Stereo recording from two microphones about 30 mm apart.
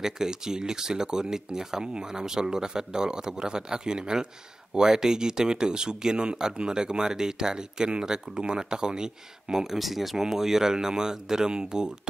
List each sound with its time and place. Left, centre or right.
0.0 s speech: right
9.8 s speech: centre; by 11.9 s right